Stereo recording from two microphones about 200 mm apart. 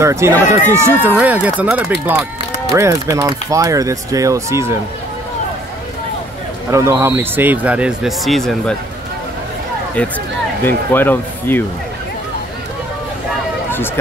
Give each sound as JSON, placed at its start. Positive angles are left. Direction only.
{"t": 0.0, "sound": "speech", "side_deg": -15}
{"t": 6.7, "sound": "speech", "side_deg": -15}
{"t": 10.0, "sound": "speech", "side_deg": 5}